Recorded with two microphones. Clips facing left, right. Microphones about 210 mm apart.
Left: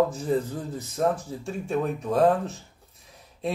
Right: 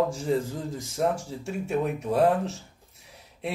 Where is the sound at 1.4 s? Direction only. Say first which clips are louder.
Even; 10° right (ahead or behind).